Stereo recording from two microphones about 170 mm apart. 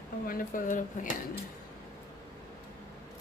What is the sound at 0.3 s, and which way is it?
Speech, 55° left (ahead or behind).